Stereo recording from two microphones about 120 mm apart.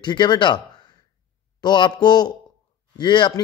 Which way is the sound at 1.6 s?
40° left (ahead or behind).